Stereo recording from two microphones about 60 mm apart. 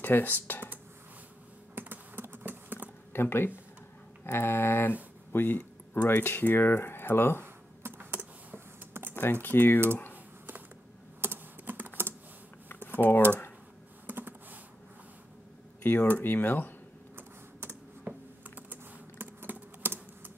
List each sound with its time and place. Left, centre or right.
0.0 s speech: left
1.8 s typing: right
3.1 s speech: left
7.4 s computer keyboard: right
9.1 s speech: left
11.1 s computer keyboard: right
12.6 s computer keyboard: left
14.0 s computer keyboard: right
15.8 s speech: left
17.1 s typing: right
18.1 s computer keyboard: right
18.7 s typing: right